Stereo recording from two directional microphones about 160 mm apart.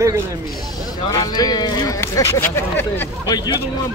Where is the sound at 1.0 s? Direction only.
25° left (ahead or behind).